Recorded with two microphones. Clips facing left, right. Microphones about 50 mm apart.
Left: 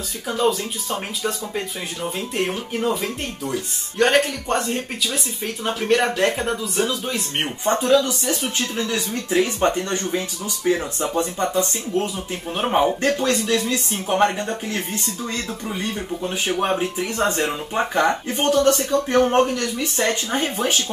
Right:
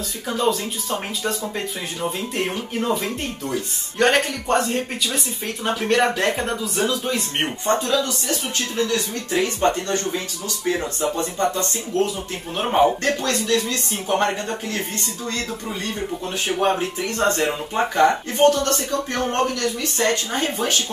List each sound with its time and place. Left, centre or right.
0.3 s speech: centre
7.8 s speech: centre
12.5 s speech: centre
13.0 s speech: centre
16.4 s speech: centre
18.4 s speech: centre